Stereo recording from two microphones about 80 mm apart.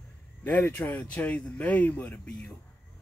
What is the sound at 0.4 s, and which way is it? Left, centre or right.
Speech, left.